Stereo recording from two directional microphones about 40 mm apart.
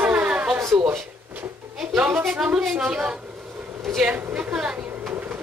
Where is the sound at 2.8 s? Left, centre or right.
Centre.